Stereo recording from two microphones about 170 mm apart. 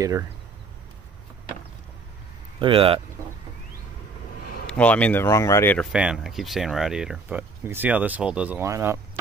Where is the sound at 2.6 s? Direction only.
35° right (ahead or behind).